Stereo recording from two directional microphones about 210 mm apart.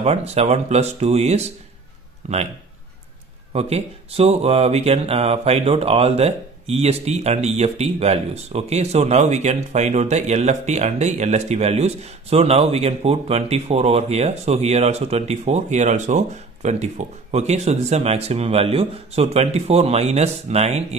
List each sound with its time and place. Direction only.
0.0 s speech: 30° right (ahead or behind)
3.5 s speech: 30° right (ahead or behind)